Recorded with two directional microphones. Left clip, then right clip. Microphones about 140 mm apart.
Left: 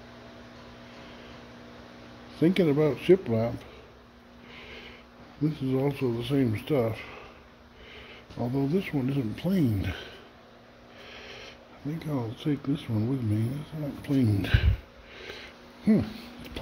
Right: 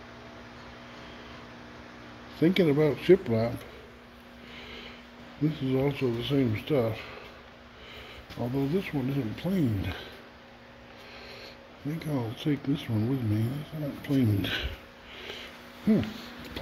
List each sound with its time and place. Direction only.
2.3 s speech: 25° left (ahead or behind)
4.6 s sniff: 20° left (ahead or behind)
5.5 s speech: 20° left (ahead or behind); by 10.0 s 40° left (ahead or behind)
11.1 s a sound: 45° left (ahead or behind)
11.9 s speech: 10° left (ahead or behind)
14.0 s speech: 25° left (ahead or behind)
15.1 s sniff: 25° left (ahead or behind)